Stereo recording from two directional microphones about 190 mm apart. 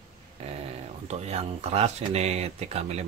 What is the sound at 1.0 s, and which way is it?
Speech, 35° right (ahead or behind).